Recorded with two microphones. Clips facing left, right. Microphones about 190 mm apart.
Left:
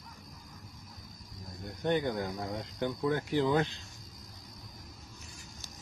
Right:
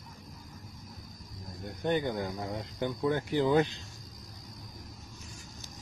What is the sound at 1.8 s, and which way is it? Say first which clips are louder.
Speech: even; 5° right (ahead or behind).